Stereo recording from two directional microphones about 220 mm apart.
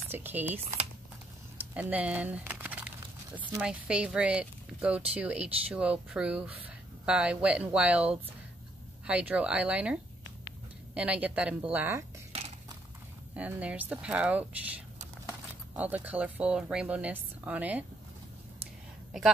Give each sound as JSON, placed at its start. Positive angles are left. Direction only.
{"t": 0.1, "sound": "speech", "side_deg": -10}
{"t": 1.7, "sound": "speech", "side_deg": -5}
{"t": 11.0, "sound": "speech", "side_deg": -5}
{"t": 12.3, "sound": "a sound", "side_deg": -30}
{"t": 13.4, "sound": "speech", "side_deg": -5}